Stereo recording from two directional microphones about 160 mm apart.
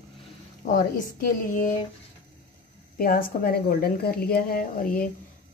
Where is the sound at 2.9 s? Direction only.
65° left (ahead or behind).